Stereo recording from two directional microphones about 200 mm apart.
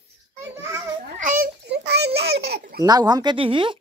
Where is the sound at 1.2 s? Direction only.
45° right (ahead or behind).